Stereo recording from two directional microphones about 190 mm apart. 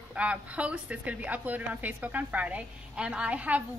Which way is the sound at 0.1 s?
5° right (ahead or behind).